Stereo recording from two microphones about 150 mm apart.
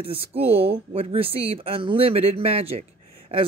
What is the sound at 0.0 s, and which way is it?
Speech, 40° right (ahead or behind).